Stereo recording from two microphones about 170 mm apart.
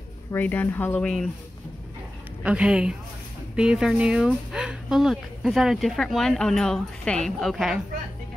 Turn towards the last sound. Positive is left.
turn(degrees=0)  # may be behind; listen again after turning